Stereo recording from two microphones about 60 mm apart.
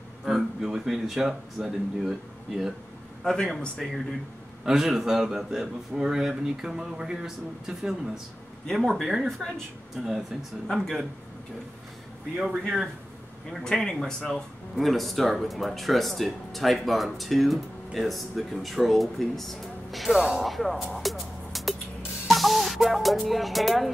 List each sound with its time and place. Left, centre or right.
0.2 s a man's voice: centre
3.3 s a man's voice: centre
12.6 s speech: centre
13.5 s speech: centre
20.4 s music: centre
23.2 s speech: centre